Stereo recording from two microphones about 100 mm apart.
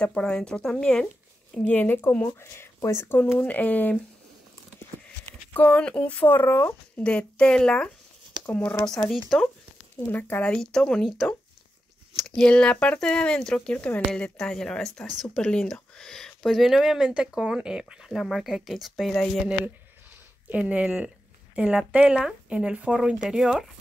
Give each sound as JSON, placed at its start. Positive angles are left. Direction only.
{"t": 0.0, "sound": "speech", "side_deg": 10}
{"t": 5.5, "sound": "speech", "side_deg": 15}
{"t": 7.0, "sound": "speech", "side_deg": 10}
{"t": 8.8, "sound": "speech", "side_deg": 5}
{"t": 10.1, "sound": "speech", "side_deg": 20}
{"t": 10.5, "sound": "speech", "side_deg": 5}
{"t": 12.2, "sound": "speech", "side_deg": 10}
{"t": 20.4, "sound": "speech", "side_deg": -15}